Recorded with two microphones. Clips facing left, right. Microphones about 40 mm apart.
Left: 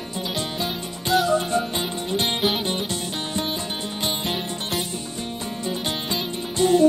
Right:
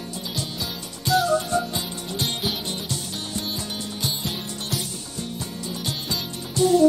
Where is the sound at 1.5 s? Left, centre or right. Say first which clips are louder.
Left 1 dB; left.